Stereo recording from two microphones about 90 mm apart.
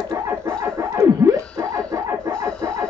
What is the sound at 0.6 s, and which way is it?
Music, 30° right (ahead or behind).